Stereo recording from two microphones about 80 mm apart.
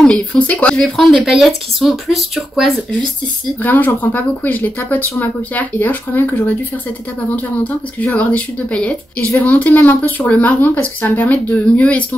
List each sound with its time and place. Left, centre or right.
0.0 s speech: centre
1.1 s speech: centre
3.6 s speech: left